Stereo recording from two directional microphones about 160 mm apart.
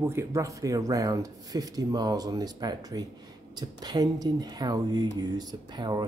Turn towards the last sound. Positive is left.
turn(degrees=-25)  # may be behind; listen again after turning